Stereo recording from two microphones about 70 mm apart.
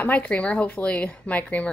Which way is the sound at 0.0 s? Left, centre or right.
Left.